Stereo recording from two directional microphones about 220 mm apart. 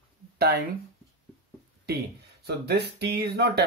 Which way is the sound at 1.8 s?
45° right (ahead or behind).